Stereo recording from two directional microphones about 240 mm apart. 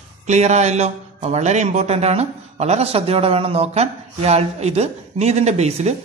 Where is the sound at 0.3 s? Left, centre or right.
Right.